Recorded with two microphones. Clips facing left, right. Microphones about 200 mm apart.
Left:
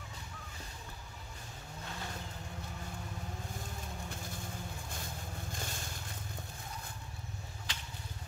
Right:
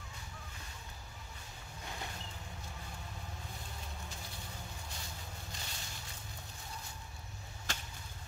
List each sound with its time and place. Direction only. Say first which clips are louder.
5.5 s vehicle: left 5 dB; 50° left (ahead or behind)
7.7 s arrow: right 4 dB; 45° right (ahead or behind)